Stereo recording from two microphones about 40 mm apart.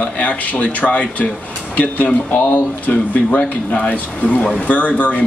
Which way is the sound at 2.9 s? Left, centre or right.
Left.